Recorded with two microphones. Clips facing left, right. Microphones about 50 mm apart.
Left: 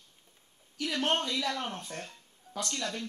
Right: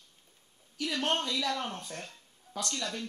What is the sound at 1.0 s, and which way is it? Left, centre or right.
Speech, centre.